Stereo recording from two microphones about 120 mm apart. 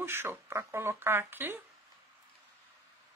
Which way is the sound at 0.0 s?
20° right (ahead or behind).